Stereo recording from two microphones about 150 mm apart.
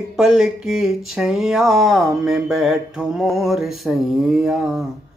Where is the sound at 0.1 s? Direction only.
Centre (ahead or behind).